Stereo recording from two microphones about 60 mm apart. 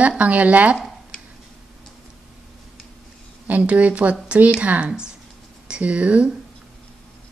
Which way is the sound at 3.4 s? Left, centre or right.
Right.